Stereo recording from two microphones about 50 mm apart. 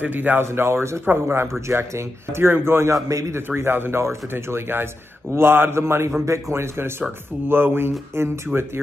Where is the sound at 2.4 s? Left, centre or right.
Right.